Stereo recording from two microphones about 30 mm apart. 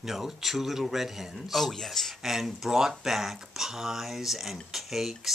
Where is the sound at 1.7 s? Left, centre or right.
Centre.